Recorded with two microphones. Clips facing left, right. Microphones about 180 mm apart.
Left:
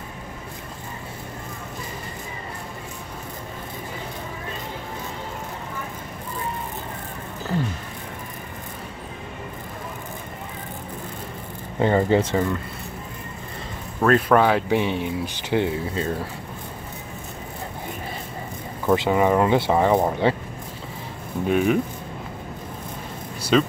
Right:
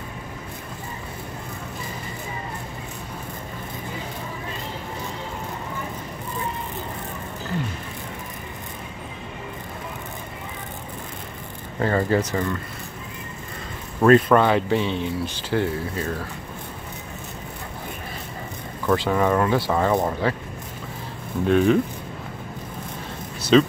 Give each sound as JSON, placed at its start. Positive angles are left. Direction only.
{"t": 11.8, "sound": "speech", "side_deg": 20}
{"t": 14.3, "sound": "speech", "side_deg": 5}
{"t": 18.9, "sound": "speech", "side_deg": 20}
{"t": 21.5, "sound": "speech", "side_deg": 10}
{"t": 23.5, "sound": "speech", "side_deg": 5}